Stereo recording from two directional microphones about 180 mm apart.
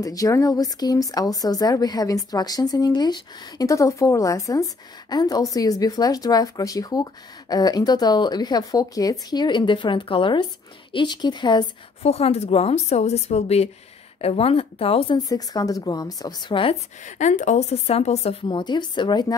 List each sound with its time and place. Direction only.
0.0 s a woman's voice: 20° left (ahead or behind)
15.1 s speech: 20° left (ahead or behind)
17.0 s a woman's voice: 40° left (ahead or behind); by 19.3 s 25° left (ahead or behind)